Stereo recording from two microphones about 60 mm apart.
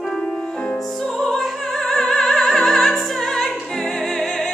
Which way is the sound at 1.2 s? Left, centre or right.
Centre.